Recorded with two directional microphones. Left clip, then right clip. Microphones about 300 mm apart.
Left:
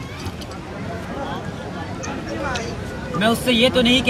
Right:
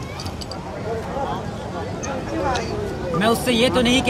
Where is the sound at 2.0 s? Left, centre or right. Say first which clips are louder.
Right 3 dB; right.